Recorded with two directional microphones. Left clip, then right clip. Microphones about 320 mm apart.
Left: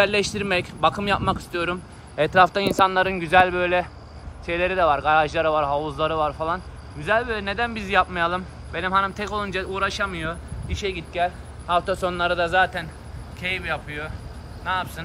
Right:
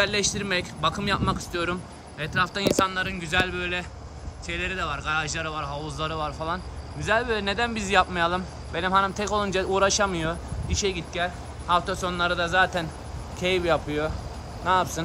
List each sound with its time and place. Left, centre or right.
0.0 s speech: centre